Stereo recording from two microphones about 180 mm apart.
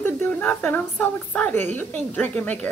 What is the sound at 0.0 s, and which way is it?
A woman's voice, 10° left (ahead or behind).